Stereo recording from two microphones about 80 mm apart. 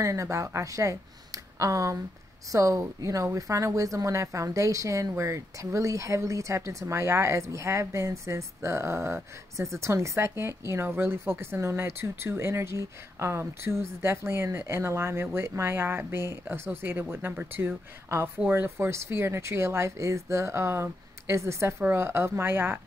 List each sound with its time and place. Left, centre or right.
0.0 s speech: right